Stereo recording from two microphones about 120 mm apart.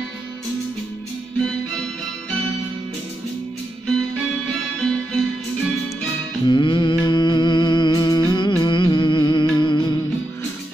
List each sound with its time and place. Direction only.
4.5 s music: 5° left (ahead or behind)
6.4 s music: 40° left (ahead or behind)